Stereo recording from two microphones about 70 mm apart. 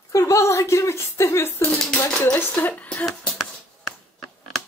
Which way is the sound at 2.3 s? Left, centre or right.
Left.